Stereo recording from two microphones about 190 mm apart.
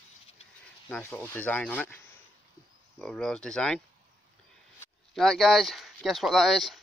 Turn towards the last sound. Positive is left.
turn(degrees=0)  # may be behind; listen again after turning